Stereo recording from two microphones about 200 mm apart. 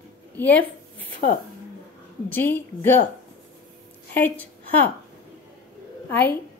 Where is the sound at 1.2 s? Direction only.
45° left (ahead or behind).